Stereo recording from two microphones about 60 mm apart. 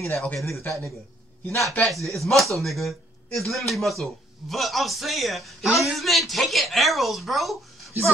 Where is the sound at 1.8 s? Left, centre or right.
Centre.